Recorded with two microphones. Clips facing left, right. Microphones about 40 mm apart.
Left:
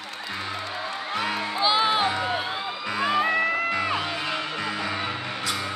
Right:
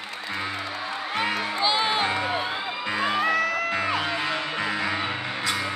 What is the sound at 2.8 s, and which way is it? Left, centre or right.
Music, right.